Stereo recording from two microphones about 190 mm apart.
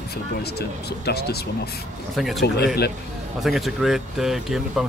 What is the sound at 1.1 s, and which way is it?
Speech, 55° left (ahead or behind).